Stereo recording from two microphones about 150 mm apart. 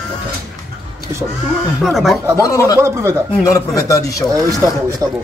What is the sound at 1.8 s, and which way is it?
Speech, centre (ahead or behind).